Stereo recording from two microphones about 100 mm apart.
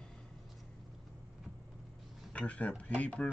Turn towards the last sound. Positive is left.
turn(degrees=15)  # may be behind; listen again after turning